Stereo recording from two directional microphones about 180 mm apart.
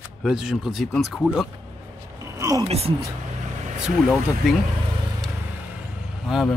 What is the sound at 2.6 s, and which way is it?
Speech, 35° right (ahead or behind).